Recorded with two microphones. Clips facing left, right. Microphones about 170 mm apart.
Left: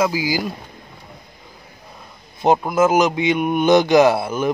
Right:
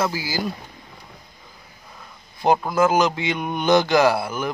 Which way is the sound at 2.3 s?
20° left (ahead or behind).